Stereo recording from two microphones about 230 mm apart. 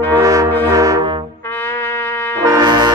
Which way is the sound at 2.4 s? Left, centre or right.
Centre.